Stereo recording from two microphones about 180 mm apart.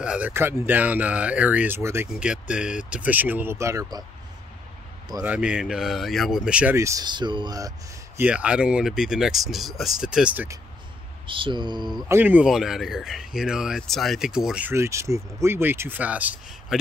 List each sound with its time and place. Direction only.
0.0 s speech: 5° right (ahead or behind)
5.2 s speech: 5° right (ahead or behind)
8.2 s speech: 5° right (ahead or behind)
11.2 s a sound: 30° right (ahead or behind)
12.1 s speech: 10° right (ahead or behind)